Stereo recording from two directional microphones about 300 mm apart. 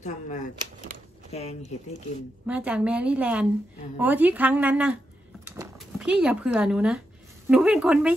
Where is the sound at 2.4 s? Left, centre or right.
Centre.